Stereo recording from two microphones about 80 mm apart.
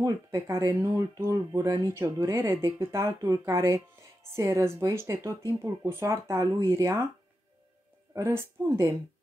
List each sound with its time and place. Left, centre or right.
0.0 s speech: right
8.1 s speech: right